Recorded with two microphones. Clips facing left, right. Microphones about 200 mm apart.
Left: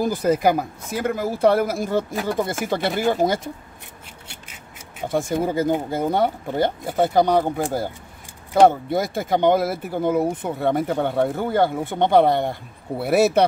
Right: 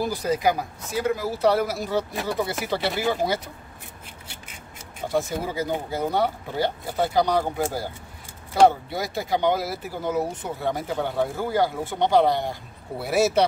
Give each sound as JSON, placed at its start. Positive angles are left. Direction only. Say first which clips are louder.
{"t": 0.0, "sound": "speech", "louder": "left 4 dB", "side_deg": 55}
{"t": 5.0, "sound": "speech", "louder": "left 4 dB", "side_deg": 55}
{"t": 8.6, "sound": "speech", "louder": "left 1 dB", "side_deg": 50}